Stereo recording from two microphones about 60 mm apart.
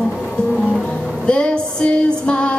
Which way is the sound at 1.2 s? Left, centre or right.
Centre.